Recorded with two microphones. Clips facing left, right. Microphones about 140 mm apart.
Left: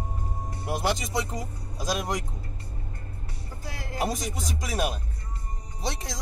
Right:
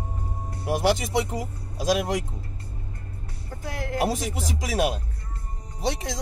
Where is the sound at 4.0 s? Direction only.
75° right (ahead or behind).